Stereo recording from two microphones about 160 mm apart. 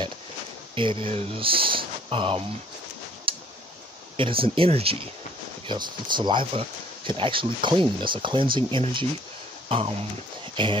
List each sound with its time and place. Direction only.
0.7 s speech: 35° right (ahead or behind)
3.3 s tick: 35° right (ahead or behind)
4.2 s speech: 35° right (ahead or behind)